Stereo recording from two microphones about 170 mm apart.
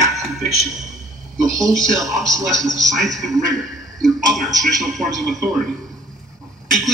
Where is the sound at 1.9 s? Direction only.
20° right (ahead or behind).